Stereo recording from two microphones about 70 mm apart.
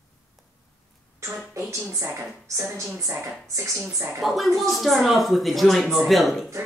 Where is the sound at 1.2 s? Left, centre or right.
Right.